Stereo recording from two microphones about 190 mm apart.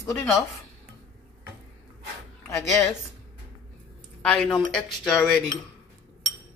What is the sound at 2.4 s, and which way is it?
Speech, 15° left (ahead or behind).